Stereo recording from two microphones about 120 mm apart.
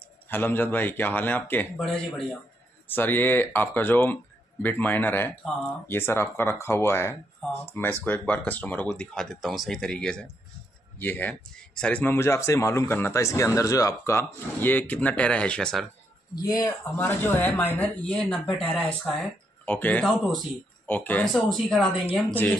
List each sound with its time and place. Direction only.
0.3 s speech: 15° left (ahead or behind)
1.9 s speech: centre (ahead or behind)
2.9 s speech: 15° left (ahead or behind)
16.4 s speech: 30° left (ahead or behind)
16.9 s speech: 20° left (ahead or behind)
21.3 s speech: centre (ahead or behind)
22.3 s speech: 15° left (ahead or behind)